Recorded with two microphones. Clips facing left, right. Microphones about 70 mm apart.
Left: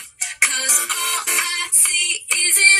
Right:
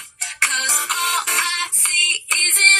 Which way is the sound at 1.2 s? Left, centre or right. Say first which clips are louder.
Right 2 dB; left.